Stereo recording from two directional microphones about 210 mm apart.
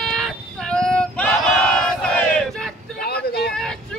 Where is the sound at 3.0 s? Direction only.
50° left (ahead or behind).